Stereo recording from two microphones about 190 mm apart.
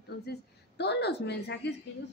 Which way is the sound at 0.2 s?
60° left (ahead or behind).